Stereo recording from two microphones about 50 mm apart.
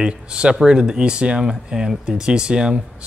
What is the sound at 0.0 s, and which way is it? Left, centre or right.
Speech, centre.